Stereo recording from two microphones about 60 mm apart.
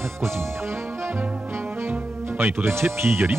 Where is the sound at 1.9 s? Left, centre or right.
Right.